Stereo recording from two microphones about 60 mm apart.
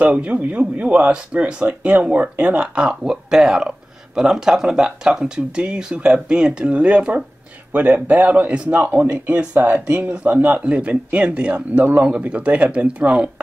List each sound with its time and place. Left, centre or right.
0.0 s speech: right